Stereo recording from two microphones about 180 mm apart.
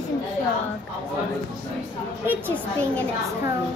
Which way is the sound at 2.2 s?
10° right (ahead or behind).